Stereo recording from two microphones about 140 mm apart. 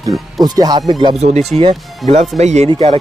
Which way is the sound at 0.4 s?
30° right (ahead or behind).